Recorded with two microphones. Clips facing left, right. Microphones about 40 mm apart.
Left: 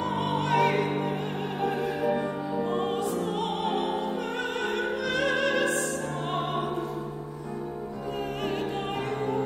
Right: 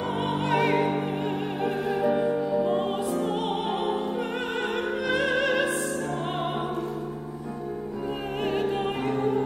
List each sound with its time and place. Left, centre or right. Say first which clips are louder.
0.4 s music: right 1 dB; centre
2.1 s music: right 5 dB; centre
5.0 s opera: right 2 dB; centre